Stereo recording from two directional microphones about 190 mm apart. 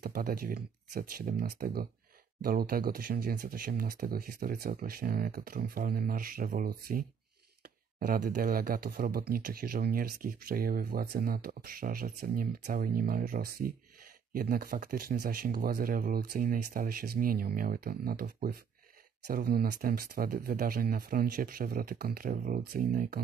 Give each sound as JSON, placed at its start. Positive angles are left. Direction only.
{"t": 0.0, "sound": "speech", "side_deg": -45}